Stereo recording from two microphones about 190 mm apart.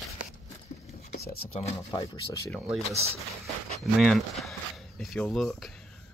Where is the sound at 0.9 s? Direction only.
55° left (ahead or behind).